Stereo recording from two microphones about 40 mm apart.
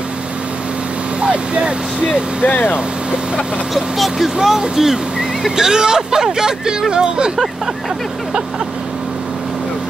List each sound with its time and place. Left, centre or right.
1.2 s speech: right
2.4 s speech: left
3.7 s speech: centre